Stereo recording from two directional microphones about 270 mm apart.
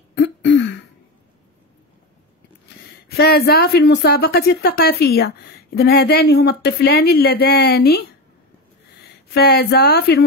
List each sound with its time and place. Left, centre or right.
0.1 s throat clearing: left
3.2 s speech: left
9.3 s speech: left